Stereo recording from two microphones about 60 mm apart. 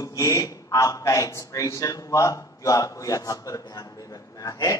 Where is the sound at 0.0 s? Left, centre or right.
Left.